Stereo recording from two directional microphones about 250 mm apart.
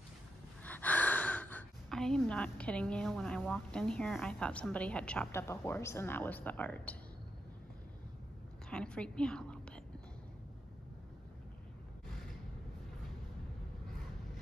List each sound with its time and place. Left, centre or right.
0.7 s speech: centre
8.6 s a woman's voice: centre